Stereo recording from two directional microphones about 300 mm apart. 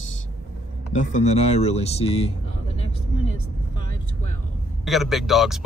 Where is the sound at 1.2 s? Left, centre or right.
Left.